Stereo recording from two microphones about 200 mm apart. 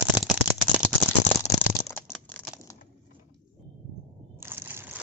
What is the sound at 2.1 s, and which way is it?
Crumpling, 5° left (ahead or behind).